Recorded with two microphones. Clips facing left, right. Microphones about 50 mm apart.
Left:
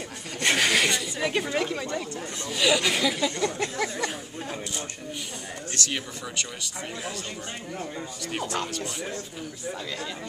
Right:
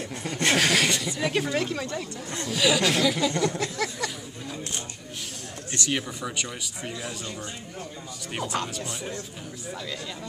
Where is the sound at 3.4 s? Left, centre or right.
Left.